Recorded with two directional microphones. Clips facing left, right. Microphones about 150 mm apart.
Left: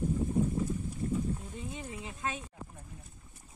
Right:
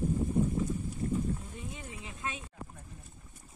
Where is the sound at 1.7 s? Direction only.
35° left (ahead or behind).